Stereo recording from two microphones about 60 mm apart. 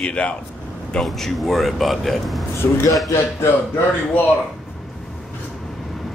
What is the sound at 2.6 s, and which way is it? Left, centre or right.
Speech, left.